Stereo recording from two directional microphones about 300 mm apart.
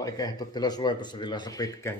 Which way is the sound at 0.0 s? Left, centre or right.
Centre.